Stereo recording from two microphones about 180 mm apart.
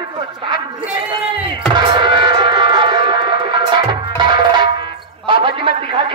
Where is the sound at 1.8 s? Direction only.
25° right (ahead or behind).